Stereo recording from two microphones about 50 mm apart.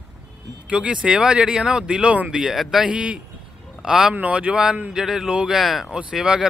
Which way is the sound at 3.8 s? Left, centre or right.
Centre.